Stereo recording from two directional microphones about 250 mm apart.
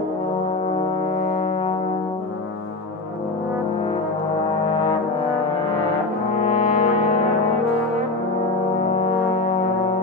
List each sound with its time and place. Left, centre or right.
6.4 s brass instrument: left